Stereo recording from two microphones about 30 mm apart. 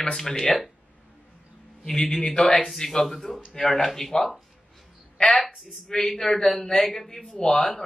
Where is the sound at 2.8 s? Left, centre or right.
Centre.